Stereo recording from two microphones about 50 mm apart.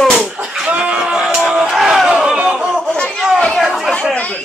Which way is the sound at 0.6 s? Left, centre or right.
Right.